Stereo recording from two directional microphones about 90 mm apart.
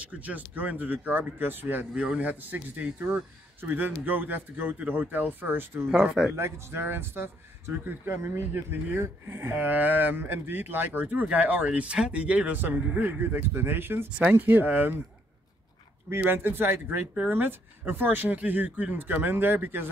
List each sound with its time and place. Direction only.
0.1 s speech: 15° right (ahead or behind)
6.0 s speech: 5° right (ahead or behind)
6.3 s speech: 30° right (ahead or behind)
16.1 s speech: 25° right (ahead or behind)